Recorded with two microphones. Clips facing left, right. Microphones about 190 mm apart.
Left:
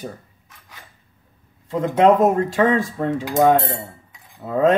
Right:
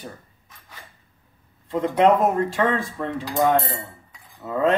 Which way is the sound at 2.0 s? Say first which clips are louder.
Left 3 dB; 40° left (ahead or behind).